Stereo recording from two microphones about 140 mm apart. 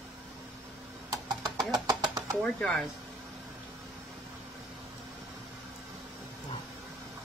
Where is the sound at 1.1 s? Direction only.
30° right (ahead or behind).